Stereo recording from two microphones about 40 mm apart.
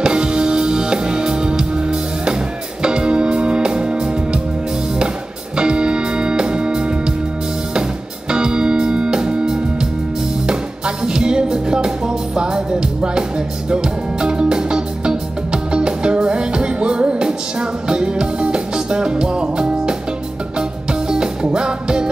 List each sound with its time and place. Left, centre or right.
0.0 s music: right
5.6 s organ: right
8.3 s music: right
11.1 s music: centre
21.1 s music: centre